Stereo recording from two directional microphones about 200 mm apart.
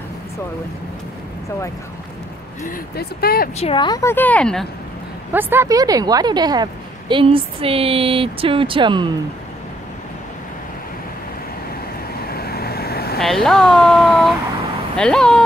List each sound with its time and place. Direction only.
2.6 s speech: 50° left (ahead or behind)
3.5 s a woman's voice: 25° left (ahead or behind); by 4.6 s 5° left (ahead or behind)
5.3 s a woman's voice: 10° right (ahead or behind)
12.3 s vehicle: 50° left (ahead or behind)
13.2 s speech: centre (ahead or behind)